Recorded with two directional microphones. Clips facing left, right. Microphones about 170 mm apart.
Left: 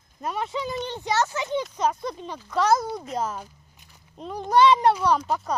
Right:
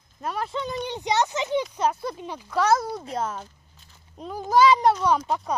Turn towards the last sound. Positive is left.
turn(degrees=0)  # may be behind; listen again after turning